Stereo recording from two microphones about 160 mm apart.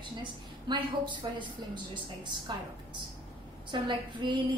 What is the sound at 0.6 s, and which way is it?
A woman's voice, 30° right (ahead or behind).